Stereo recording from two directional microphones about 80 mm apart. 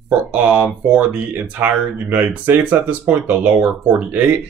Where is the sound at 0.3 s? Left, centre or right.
Centre.